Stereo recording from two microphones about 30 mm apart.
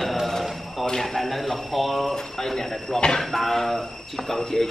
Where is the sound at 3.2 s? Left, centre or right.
Centre.